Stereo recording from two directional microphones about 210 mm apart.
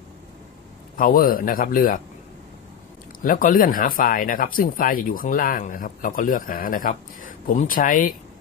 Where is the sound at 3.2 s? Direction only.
40° left (ahead or behind).